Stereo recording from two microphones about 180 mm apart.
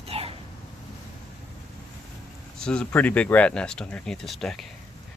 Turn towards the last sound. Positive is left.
turn(degrees=0)  # may be behind; listen again after turning